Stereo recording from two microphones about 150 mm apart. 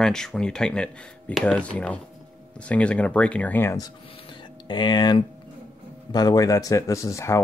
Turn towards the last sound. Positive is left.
turn(degrees=20)  # may be behind; listen again after turning